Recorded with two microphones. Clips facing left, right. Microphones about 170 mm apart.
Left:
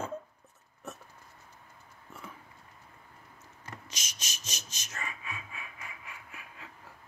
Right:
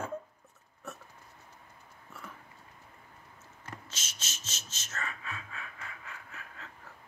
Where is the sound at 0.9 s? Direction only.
20° left (ahead or behind).